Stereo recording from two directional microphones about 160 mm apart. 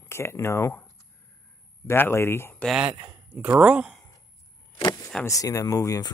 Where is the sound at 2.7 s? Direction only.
5° right (ahead or behind).